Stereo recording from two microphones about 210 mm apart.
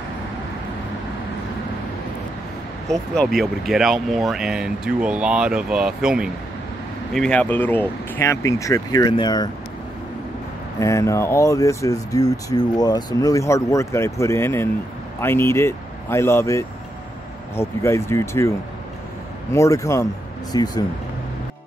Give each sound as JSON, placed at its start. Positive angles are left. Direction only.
{"t": 2.9, "sound": "speech", "side_deg": 0}
{"t": 10.8, "sound": "speech", "side_deg": 15}
{"t": 19.5, "sound": "speech", "side_deg": 15}